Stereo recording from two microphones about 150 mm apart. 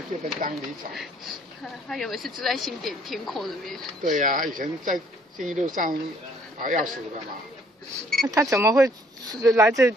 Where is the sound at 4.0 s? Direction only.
60° right (ahead or behind).